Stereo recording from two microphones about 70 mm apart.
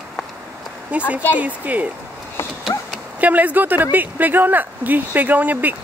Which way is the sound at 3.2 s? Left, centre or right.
Right.